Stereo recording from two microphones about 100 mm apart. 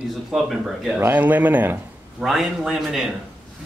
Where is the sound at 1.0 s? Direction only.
15° right (ahead or behind).